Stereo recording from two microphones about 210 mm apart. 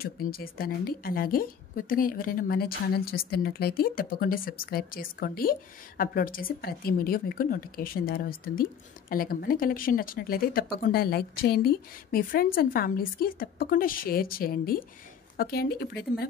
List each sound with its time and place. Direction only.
0.0 s a woman's voice: 45° left (ahead or behind)